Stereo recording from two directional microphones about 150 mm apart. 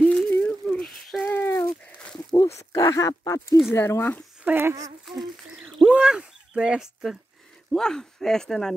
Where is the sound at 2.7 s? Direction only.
20° left (ahead or behind).